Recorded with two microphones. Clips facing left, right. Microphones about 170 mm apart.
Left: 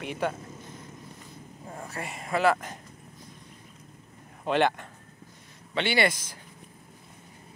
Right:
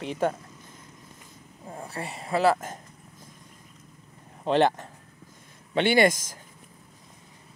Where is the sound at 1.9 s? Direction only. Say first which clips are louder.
Right 2 dB; 30° right (ahead or behind).